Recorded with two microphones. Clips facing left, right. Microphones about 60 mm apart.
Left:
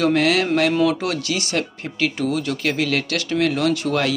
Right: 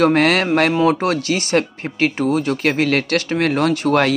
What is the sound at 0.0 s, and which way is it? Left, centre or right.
Speech, right.